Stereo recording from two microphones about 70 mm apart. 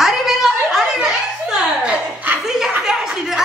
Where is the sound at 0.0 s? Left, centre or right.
Centre.